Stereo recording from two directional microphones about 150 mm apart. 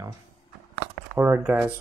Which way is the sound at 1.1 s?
15° right (ahead or behind).